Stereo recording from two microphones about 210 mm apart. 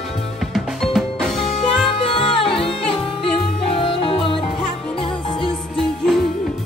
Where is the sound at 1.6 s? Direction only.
25° left (ahead or behind).